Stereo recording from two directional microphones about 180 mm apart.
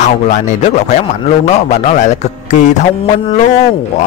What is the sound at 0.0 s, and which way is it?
A man's voice, 40° left (ahead or behind).